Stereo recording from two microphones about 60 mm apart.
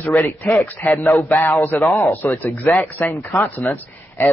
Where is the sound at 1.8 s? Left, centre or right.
Left.